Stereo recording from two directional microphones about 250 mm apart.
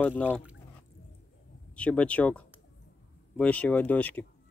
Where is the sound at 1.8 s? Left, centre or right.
Centre.